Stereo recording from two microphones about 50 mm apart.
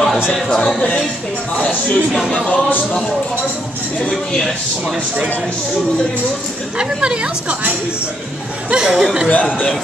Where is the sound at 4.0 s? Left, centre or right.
Centre.